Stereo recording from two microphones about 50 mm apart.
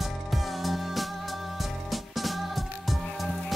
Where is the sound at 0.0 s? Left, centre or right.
Centre.